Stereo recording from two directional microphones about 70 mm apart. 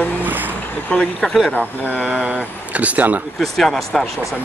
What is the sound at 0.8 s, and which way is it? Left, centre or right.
Speech, centre.